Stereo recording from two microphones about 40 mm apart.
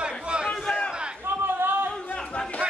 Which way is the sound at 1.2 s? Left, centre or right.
Right.